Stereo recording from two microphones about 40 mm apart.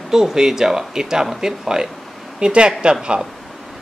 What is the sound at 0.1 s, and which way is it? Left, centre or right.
Speech, centre.